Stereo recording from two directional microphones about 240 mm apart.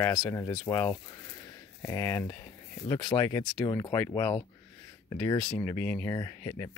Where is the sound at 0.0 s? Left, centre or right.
Centre.